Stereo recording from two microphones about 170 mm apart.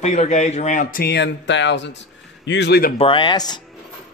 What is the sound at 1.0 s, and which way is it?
A man's voice, 85° left.